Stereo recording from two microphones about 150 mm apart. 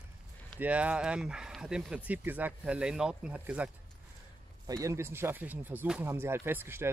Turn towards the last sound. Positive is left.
turn(degrees=-15)  # may be behind; listen again after turning